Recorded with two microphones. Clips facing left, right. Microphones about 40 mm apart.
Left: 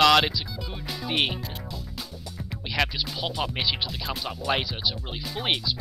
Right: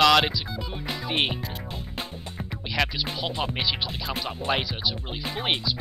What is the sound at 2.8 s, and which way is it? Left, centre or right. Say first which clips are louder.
Music: even; centre.